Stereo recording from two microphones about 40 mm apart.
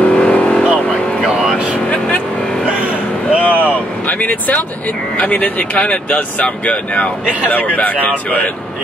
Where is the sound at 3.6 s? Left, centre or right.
Left.